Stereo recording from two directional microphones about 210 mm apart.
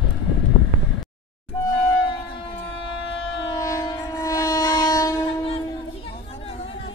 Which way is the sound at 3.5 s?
15° left (ahead or behind).